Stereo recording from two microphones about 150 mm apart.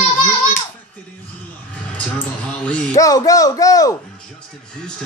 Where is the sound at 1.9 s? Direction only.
10° left (ahead or behind).